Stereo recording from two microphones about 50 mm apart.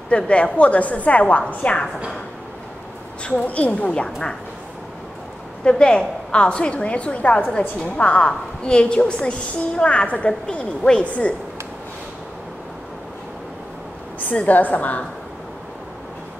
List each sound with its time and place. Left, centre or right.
0.1 s a woman's voice: left
3.3 s a woman's voice: left
5.6 s a woman's voice: centre
14.3 s a woman's voice: left